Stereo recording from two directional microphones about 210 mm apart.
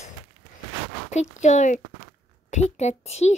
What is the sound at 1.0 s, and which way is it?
A woman's voice, 35° left (ahead or behind).